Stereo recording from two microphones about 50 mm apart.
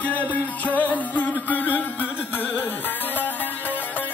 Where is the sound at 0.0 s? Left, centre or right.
Left.